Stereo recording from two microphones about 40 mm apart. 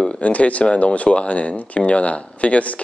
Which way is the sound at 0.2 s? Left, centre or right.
Left.